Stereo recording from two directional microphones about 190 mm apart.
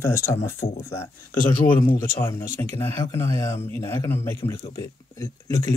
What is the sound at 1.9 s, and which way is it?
Speech, 15° left (ahead or behind).